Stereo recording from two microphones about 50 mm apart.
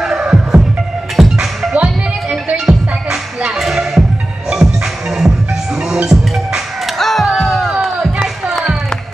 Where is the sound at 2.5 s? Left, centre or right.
Centre.